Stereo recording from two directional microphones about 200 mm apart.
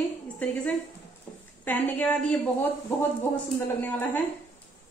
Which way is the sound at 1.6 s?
10° left (ahead or behind).